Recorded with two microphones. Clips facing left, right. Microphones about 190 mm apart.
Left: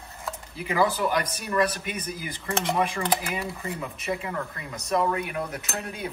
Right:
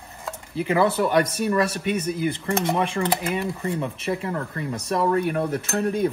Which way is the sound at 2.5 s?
15° right (ahead or behind).